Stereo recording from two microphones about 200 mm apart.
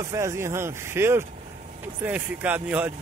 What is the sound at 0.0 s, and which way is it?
Speech, 15° right (ahead or behind).